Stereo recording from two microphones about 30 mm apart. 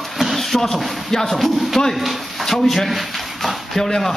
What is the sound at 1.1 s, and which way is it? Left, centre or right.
Speech, centre.